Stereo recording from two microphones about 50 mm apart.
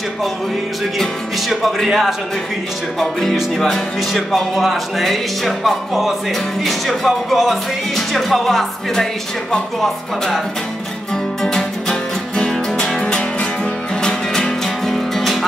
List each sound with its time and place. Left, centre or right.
1.5 s music: centre
3.0 s speech: centre
3.5 s music: centre
9.5 s speech: centre
11.4 s music: centre